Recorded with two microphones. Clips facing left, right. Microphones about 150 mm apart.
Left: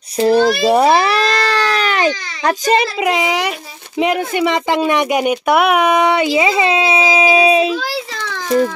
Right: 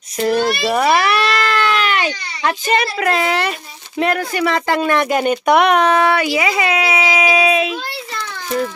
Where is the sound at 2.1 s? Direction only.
90° left.